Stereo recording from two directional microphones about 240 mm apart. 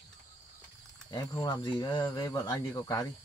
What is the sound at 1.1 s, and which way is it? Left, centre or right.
Speech, centre.